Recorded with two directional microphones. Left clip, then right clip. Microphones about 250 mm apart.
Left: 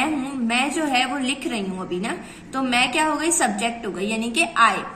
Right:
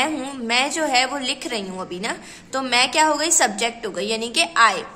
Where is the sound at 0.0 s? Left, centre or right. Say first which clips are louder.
Even; right.